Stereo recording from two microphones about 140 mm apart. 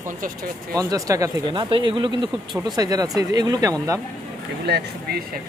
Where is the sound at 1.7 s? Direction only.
35° right (ahead or behind).